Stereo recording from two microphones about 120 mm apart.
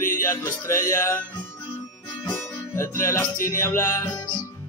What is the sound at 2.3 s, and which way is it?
Music, 20° left (ahead or behind).